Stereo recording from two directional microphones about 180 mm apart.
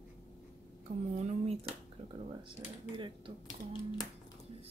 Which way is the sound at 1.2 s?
40° right (ahead or behind).